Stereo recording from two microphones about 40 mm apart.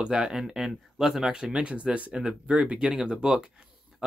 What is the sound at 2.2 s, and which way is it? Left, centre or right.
Speech, centre.